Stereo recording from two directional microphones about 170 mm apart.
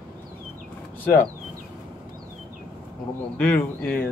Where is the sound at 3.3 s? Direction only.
10° left (ahead or behind).